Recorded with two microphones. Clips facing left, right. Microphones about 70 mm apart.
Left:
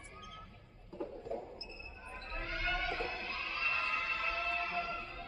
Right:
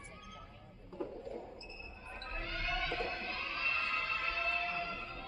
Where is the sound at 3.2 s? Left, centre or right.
Right.